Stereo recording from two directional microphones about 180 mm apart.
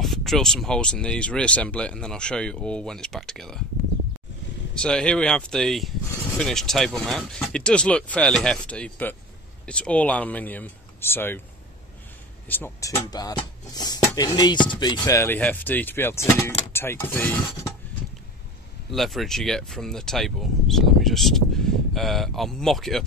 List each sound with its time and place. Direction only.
0.0 s speech: centre (ahead or behind)
4.7 s speech: 5° left (ahead or behind)
12.4 s speech: 10° left (ahead or behind)
18.9 s speech: centre (ahead or behind)